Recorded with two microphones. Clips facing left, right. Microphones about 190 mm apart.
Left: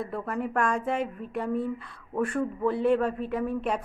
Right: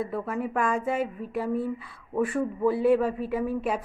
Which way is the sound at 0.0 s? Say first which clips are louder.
Right 2 dB; centre (ahead or behind).